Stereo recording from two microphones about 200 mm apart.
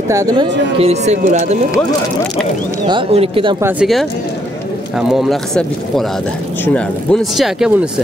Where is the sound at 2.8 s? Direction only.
25° right (ahead or behind).